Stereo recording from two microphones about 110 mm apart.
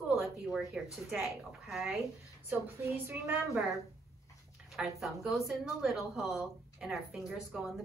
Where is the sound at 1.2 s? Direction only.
5° right (ahead or behind).